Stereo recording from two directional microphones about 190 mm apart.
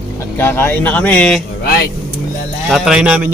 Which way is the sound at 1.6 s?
55° left (ahead or behind).